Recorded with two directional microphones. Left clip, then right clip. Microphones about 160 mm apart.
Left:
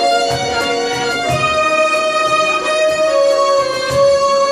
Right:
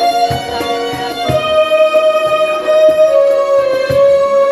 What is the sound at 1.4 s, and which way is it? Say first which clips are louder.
Music: right 4 dB; 25° right (ahead or behind).